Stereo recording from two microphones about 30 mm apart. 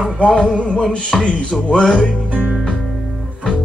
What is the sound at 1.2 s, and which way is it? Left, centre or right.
Music, left.